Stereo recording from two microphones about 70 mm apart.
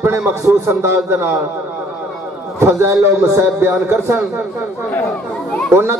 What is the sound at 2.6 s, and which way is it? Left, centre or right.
A man's voice, right.